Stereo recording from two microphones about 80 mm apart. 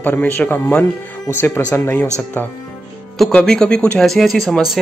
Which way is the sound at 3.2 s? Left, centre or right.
Centre.